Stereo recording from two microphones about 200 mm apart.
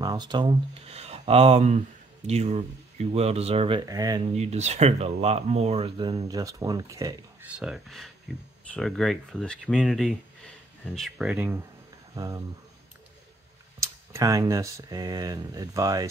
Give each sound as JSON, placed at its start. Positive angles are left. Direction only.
{"t": 0.0, "sound": "speech", "side_deg": -20}
{"t": 4.4, "sound": "speech", "side_deg": -35}
{"t": 7.5, "sound": "speech", "side_deg": -5}
{"t": 13.7, "sound": "speech", "side_deg": -15}